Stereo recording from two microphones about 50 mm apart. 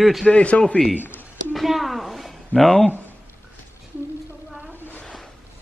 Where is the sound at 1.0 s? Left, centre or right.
Left.